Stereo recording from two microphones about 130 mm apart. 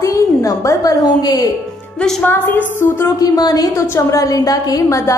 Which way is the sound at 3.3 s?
30° left (ahead or behind).